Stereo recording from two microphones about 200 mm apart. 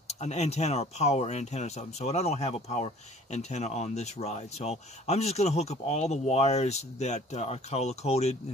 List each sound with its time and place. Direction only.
0.2 s speech: 35° left (ahead or behind)